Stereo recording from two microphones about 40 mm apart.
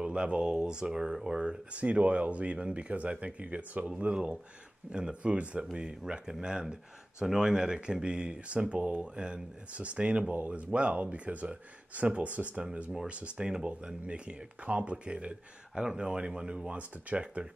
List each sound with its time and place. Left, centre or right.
0.0 s speech: right
1.4 s speech: right
4.1 s speech: right
5.6 s speech: right